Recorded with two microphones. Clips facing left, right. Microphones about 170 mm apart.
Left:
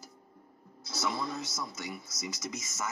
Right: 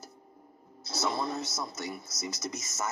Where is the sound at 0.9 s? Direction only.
40° right (ahead or behind).